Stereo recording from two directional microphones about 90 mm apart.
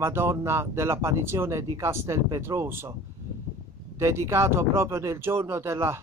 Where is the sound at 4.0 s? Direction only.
30° right (ahead or behind).